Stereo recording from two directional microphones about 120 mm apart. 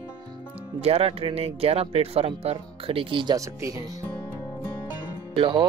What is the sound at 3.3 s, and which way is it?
Speech, 25° right (ahead or behind).